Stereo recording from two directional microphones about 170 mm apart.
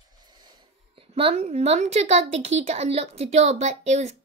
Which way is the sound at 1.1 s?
35° right (ahead or behind).